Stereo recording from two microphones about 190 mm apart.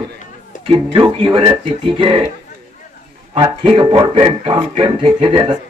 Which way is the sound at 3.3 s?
30° right (ahead or behind).